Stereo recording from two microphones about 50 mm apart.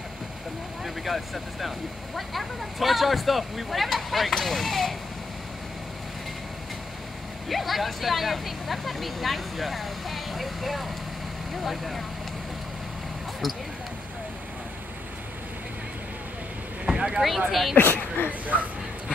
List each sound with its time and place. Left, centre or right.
0.8 s speech: centre
7.4 s speech: centre
16.8 s boat: centre
17.5 s speech: centre
17.7 s speech: left